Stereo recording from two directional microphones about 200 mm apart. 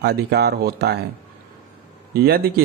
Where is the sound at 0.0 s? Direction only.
55° right (ahead or behind).